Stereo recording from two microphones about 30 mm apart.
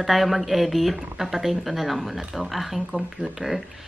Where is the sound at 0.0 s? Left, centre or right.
Centre.